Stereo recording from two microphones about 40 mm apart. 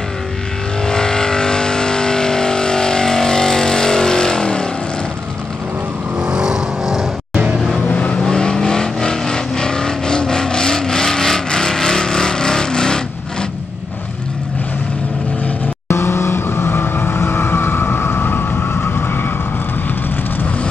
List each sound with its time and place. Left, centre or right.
0.8 s vehicle: centre
6.1 s vehicle: right
7.9 s vehicle: left
8.2 s vehicle: centre
16.0 s vehicle: left